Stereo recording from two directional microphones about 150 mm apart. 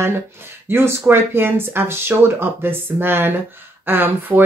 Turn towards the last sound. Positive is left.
turn(degrees=-15)  # may be behind; listen again after turning